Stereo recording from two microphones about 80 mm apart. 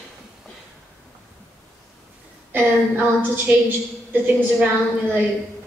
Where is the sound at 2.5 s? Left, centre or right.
Right.